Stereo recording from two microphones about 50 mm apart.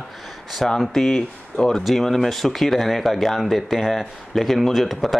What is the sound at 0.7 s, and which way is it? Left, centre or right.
A man's voice, centre.